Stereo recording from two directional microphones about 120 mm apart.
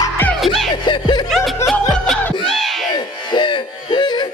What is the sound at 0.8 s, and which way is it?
Snicker, 40° left (ahead or behind).